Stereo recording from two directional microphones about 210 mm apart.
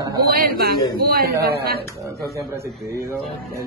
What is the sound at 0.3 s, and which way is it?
Speech, 45° right (ahead or behind).